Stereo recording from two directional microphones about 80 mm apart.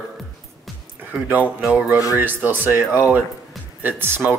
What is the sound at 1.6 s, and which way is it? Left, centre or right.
Music, centre.